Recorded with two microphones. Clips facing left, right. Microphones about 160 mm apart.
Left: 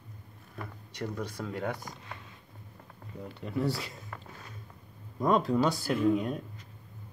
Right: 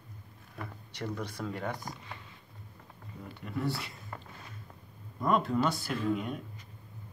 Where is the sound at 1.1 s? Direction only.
5° left (ahead or behind).